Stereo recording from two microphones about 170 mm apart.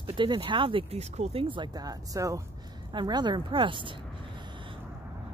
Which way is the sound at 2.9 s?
25° right (ahead or behind).